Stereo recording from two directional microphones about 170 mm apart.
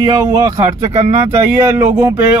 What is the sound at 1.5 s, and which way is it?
Speech, 15° right (ahead or behind).